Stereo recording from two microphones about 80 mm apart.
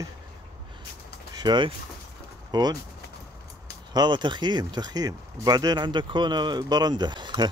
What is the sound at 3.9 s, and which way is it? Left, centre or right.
Speech, right.